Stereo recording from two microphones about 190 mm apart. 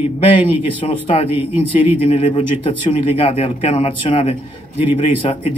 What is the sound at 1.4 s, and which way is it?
Speech, 10° right (ahead or behind).